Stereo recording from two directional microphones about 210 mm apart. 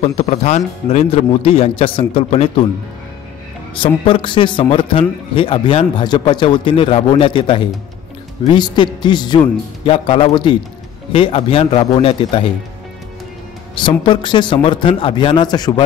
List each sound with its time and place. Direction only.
0.0 s a man's voice: 30° left (ahead or behind)
3.7 s a man's voice: 25° left (ahead or behind)
13.7 s a man's voice: 25° left (ahead or behind)